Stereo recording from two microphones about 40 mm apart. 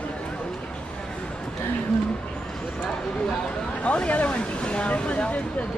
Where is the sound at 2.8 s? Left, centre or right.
Left.